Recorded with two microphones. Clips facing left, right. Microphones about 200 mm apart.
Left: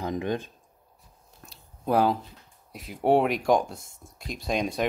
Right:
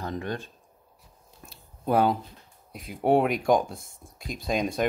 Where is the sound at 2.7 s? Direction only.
Centre (ahead or behind).